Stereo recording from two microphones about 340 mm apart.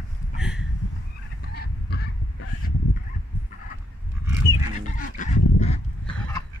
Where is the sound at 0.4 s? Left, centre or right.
Centre.